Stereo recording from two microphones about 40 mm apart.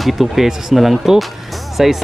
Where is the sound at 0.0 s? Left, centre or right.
Centre.